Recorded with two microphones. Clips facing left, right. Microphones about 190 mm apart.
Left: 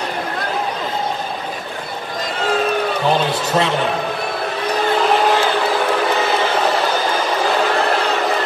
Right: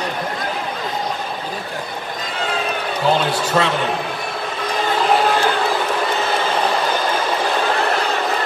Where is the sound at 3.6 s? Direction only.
20° left (ahead or behind).